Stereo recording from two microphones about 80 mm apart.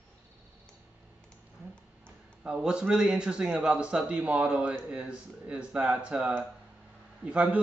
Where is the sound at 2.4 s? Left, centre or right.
Centre.